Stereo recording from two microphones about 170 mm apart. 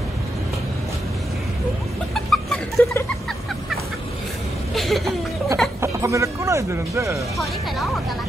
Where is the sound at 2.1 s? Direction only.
Centre (ahead or behind).